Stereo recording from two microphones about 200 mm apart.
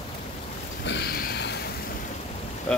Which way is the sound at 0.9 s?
55° left (ahead or behind).